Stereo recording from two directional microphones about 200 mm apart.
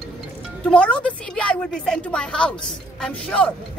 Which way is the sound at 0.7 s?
5° left (ahead or behind).